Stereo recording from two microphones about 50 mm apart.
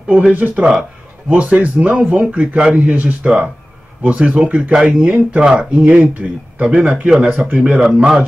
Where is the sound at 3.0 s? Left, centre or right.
Right.